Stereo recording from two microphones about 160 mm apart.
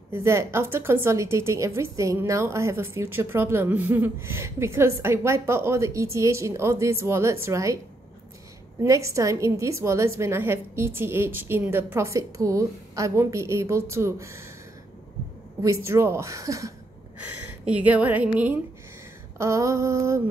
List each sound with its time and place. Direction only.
0.1 s a woman's voice: 15° right (ahead or behind)
8.8 s a woman's voice: 20° right (ahead or behind)
15.6 s a woman's voice: 20° right (ahead or behind)
17.6 s a woman's voice: 10° right (ahead or behind)